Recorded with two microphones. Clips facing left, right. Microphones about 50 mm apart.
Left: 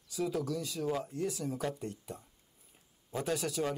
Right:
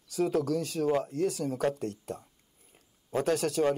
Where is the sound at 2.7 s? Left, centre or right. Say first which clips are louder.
Right 8 dB; right.